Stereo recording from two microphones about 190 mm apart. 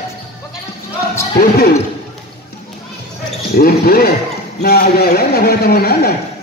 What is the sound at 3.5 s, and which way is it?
A man's voice, 55° left (ahead or behind).